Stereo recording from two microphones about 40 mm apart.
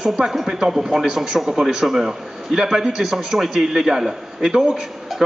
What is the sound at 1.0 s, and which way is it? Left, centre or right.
Speech, right.